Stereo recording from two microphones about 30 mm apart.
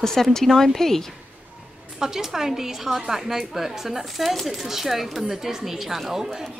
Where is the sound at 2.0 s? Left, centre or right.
Centre.